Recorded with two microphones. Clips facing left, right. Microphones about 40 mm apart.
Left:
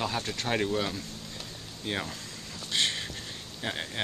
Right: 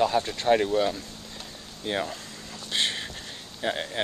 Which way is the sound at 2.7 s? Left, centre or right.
Centre.